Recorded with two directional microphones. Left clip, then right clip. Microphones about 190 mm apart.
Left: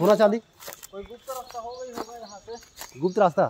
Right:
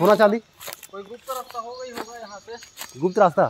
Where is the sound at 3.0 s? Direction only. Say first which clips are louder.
Right 3 dB; 35° right (ahead or behind).